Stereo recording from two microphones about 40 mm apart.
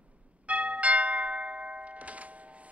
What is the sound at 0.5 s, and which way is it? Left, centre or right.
Music, right.